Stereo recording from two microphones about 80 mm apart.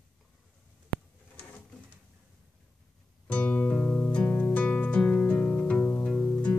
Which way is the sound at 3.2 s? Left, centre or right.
Centre.